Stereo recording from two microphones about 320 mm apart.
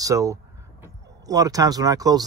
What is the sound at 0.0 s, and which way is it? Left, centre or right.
Speech, centre.